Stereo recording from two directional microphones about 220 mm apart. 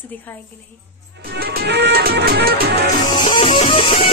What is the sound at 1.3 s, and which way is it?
Music, 45° right (ahead or behind).